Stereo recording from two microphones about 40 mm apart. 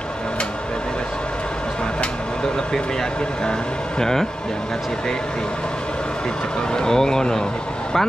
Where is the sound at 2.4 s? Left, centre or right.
Centre.